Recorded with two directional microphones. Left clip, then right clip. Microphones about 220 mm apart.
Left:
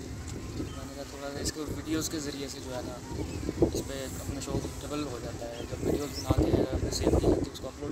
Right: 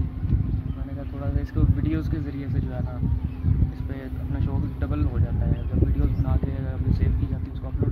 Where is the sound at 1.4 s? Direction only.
10° left (ahead or behind).